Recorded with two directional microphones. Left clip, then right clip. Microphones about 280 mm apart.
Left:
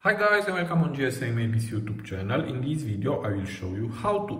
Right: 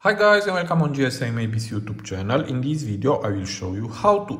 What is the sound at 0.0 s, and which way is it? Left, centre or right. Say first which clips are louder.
Speech: right 6 dB; centre.